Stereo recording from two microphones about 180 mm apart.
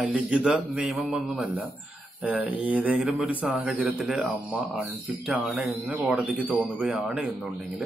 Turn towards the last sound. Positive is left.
turn(degrees=-5)  # may be behind; listen again after turning